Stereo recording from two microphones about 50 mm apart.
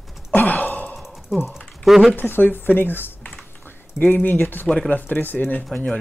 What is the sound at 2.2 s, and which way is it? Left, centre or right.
Speech, left.